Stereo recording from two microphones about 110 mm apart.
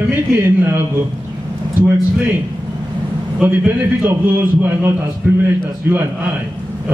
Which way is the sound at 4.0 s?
20° right (ahead or behind).